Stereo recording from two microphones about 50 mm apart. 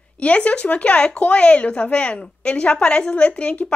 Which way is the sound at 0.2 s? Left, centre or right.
Left.